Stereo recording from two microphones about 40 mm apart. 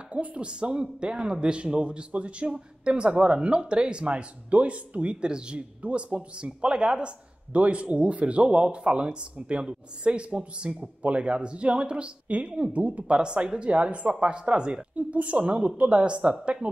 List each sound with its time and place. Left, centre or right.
0.1 s speech: right
5.8 s speech: right
13.2 s speech: right